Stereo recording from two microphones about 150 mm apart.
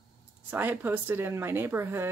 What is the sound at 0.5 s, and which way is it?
Speech, 15° right (ahead or behind).